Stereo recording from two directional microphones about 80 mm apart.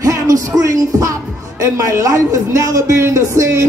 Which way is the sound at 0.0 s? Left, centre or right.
Right.